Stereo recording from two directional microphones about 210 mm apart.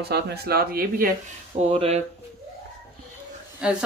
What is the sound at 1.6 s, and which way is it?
Speech, 30° right (ahead or behind).